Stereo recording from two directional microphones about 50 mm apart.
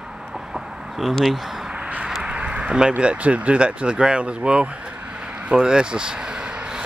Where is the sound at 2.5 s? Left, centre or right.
Centre.